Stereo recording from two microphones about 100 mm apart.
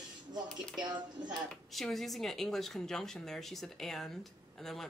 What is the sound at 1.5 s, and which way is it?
Speech, centre (ahead or behind).